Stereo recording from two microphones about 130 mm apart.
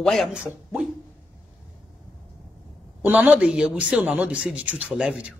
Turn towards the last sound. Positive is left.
turn(degrees=-5)  # may be behind; listen again after turning